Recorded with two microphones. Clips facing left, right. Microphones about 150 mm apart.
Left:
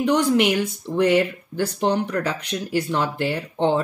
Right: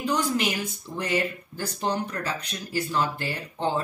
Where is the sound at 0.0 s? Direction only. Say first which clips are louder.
Left 7 dB; 85° left.